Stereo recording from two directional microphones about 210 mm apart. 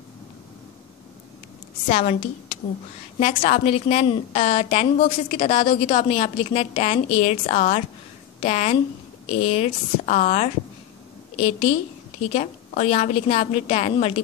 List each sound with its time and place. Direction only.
1.9 s a woman's voice: 30° left (ahead or behind)